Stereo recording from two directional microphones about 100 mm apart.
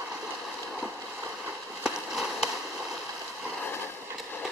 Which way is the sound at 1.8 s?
5° right (ahead or behind).